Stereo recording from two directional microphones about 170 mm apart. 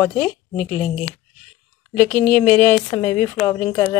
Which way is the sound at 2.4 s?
15° left (ahead or behind).